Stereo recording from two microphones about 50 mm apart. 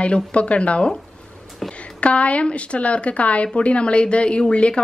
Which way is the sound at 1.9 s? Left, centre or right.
Left.